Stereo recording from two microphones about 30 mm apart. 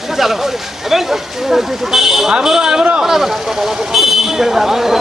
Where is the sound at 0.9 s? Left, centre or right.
Centre.